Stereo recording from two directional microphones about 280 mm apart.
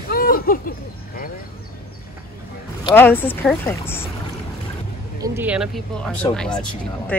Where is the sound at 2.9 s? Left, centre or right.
Centre.